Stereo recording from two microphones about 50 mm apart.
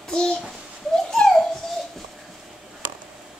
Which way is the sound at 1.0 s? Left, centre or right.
Centre.